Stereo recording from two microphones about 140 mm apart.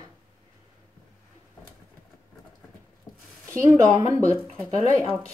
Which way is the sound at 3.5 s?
20° right (ahead or behind).